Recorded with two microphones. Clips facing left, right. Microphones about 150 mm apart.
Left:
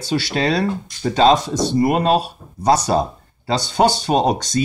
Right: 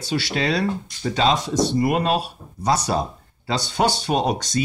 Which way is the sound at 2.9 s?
30° left (ahead or behind).